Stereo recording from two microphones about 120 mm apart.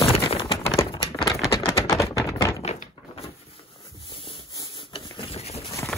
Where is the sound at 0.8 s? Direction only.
40° left (ahead or behind).